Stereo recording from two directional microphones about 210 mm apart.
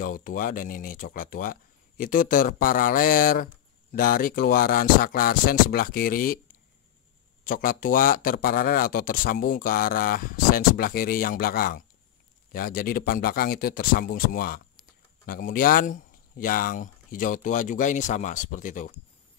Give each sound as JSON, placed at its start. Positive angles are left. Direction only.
{"t": 0.0, "sound": "speech", "side_deg": 40}
{"t": 7.4, "sound": "speech", "side_deg": 40}